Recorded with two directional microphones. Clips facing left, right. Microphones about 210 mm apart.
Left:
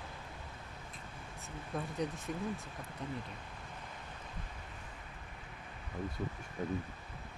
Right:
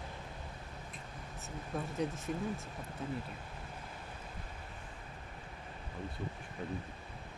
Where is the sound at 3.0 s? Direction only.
5° right (ahead or behind).